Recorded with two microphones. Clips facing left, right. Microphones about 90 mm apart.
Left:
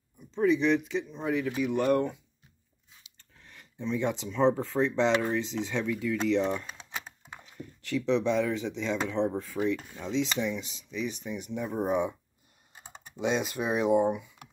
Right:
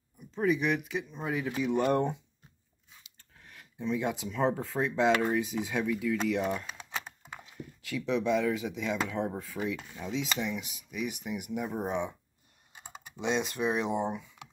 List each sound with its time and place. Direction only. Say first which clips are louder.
0.3 s speech: left 4 dB; 5° right (ahead or behind)
1.5 s speech: even; 25° right (ahead or behind)
3.2 s speech: even; 5° right (ahead or behind)
11.7 s speech: left 7 dB; 5° left (ahead or behind)
13.3 s speech: even; 5° left (ahead or behind)